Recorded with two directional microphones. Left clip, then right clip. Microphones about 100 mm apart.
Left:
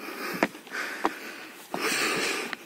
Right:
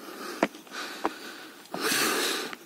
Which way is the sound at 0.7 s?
20° right (ahead or behind).